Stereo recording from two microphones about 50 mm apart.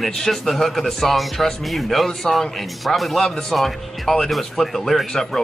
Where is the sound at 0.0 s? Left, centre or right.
Centre.